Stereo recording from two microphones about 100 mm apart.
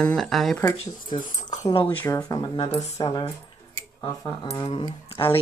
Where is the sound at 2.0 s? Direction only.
40° left (ahead or behind).